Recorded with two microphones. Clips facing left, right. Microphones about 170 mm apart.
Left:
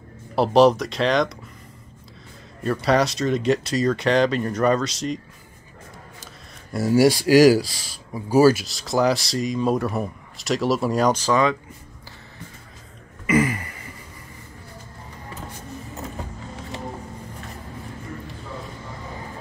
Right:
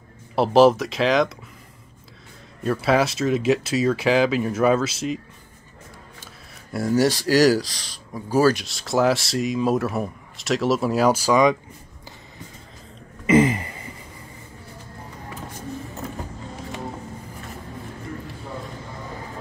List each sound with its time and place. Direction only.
0.4 s speech: centre (ahead or behind)
2.6 s speech: centre (ahead or behind)
6.7 s speech: 5° left (ahead or behind); by 11.5 s 10° right (ahead or behind)
13.3 s a sound: 25° right (ahead or behind)